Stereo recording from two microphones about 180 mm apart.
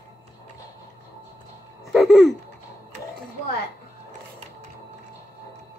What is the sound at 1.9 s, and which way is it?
Baby laughter, centre (ahead or behind).